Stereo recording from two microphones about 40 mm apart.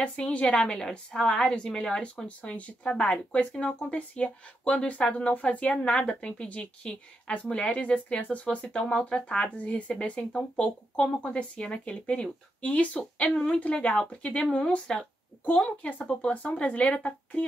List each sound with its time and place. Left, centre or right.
0.0 s a woman's voice: left
2.2 s speech: left